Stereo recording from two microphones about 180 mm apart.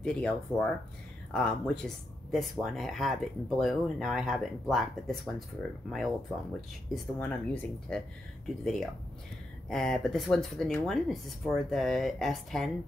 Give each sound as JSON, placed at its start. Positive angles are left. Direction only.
{"t": 0.0, "sound": "speech", "side_deg": 5}
{"t": 9.7, "sound": "speech", "side_deg": 0}